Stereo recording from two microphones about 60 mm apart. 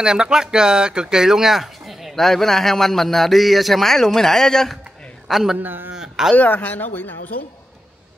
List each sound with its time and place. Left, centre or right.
0.0 s speech: centre
5.6 s a man's voice: right
5.9 s a sound: centre
6.3 s speech: left